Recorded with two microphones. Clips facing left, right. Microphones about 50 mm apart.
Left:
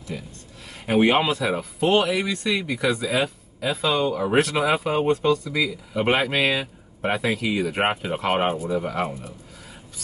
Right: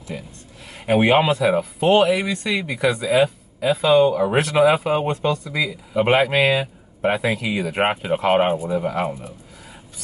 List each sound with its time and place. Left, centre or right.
0.1 s speech: right
0.8 s speech: centre